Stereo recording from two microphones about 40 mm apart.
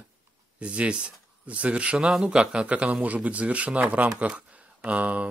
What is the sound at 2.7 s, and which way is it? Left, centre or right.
Speech, right.